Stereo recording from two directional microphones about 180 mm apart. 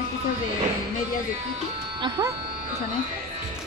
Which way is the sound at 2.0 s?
25° right (ahead or behind).